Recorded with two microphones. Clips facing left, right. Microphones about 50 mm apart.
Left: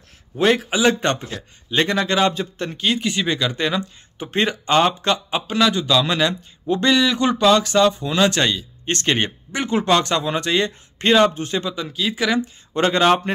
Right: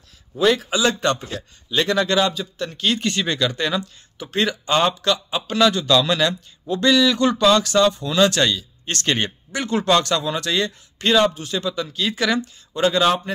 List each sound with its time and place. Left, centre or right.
0.6 s speech: centre
1.7 s a man's voice: left
2.0 s speech: centre
2.2 s a man's voice: left
2.8 s speech: centre; by 5.4 s left
5.5 s speech: centre
6.0 s speech: left
11.7 s speech: centre
12.7 s a man's voice: left